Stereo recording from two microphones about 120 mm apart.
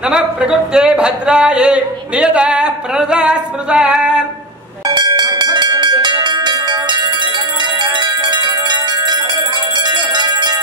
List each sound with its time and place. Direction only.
0.1 s speech: 5° right (ahead or behind)
4.8 s a sound: 35° right (ahead or behind)
7.8 s bell: 40° right (ahead or behind)
9.8 s music: 40° right (ahead or behind)